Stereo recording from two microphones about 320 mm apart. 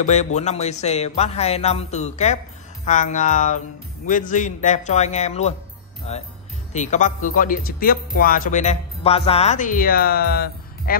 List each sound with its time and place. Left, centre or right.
0.0 s speech: left